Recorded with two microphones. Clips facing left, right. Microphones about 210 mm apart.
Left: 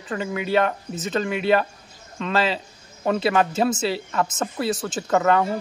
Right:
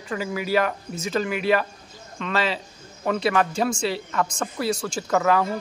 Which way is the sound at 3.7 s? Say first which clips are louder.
Left 1 dB; centre (ahead or behind).